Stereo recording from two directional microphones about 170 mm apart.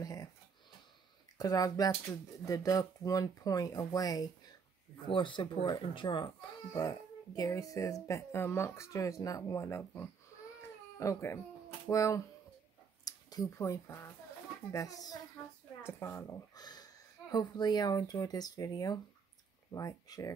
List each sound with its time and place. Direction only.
0.0 s a sound: 20° left (ahead or behind)
1.4 s speech: 20° left (ahead or behind)
10.6 s baby cry: 15° left (ahead or behind)
11.9 s speech: 20° left (ahead or behind)